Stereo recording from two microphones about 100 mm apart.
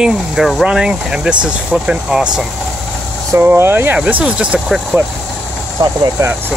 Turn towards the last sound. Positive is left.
turn(degrees=-30)  # may be behind; listen again after turning